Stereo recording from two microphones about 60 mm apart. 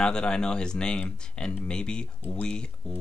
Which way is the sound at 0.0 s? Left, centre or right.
Centre.